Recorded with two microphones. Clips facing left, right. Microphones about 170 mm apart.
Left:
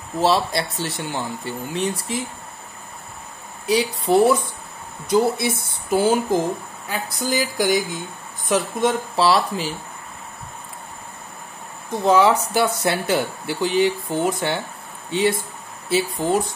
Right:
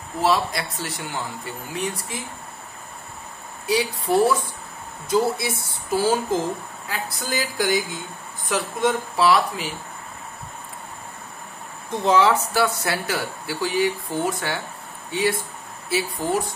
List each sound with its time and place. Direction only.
0.2 s speech: 30° left (ahead or behind)
3.6 s speech: 20° left (ahead or behind)
12.1 s speech: 15° left (ahead or behind)